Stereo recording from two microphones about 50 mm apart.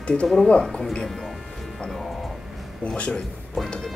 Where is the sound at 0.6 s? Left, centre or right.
Centre.